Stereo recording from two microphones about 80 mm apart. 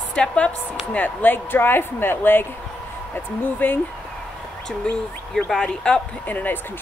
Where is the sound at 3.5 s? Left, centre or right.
Left.